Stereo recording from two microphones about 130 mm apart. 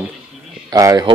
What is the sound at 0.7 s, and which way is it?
Speech, 30° right (ahead or behind).